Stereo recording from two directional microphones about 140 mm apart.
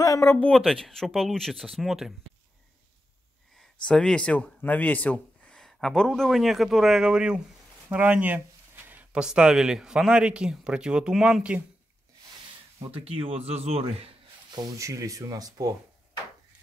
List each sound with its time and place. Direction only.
0.0 s speech: 20° left (ahead or behind)
0.6 s speech: centre (ahead or behind)
3.8 s speech: 5° left (ahead or behind)
12.9 s speech: 40° right (ahead or behind)
14.5 s speech: 25° right (ahead or behind)